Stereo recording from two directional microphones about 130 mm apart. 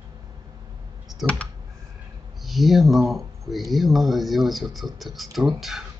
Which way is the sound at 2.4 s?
Centre (ahead or behind).